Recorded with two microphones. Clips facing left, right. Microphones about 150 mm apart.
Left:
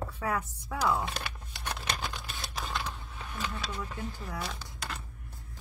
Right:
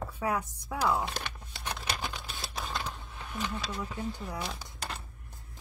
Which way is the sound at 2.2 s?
Centre (ahead or behind).